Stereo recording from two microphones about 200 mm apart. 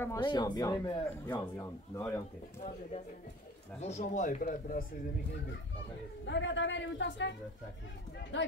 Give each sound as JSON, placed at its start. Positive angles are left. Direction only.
{"t": 0.0, "sound": "speech", "side_deg": 20}
{"t": 3.8, "sound": "speech", "side_deg": 35}
{"t": 6.2, "sound": "a man's voice", "side_deg": 65}